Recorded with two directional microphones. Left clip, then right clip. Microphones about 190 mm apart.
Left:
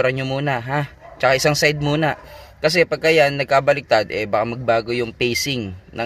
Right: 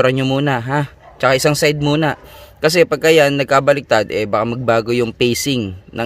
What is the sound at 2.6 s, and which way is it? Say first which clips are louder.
Speech: right 4 dB; 40° right (ahead or behind).